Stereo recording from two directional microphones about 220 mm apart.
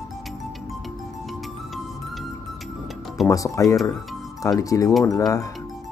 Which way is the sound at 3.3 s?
15° left (ahead or behind).